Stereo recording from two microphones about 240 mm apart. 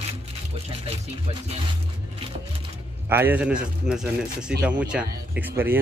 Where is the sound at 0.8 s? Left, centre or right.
Right.